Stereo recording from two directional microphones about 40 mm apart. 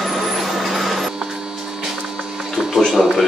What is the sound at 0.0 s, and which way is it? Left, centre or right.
Vehicle, centre.